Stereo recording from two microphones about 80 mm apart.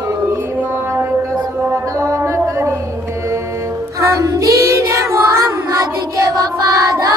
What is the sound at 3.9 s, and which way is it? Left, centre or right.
Child singing, right.